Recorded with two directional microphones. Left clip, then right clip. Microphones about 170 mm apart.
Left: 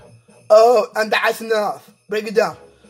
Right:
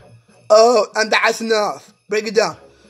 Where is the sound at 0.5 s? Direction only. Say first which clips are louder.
Even; 15° right (ahead or behind).